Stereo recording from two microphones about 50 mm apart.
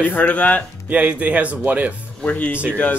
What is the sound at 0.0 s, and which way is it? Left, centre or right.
Speech, left.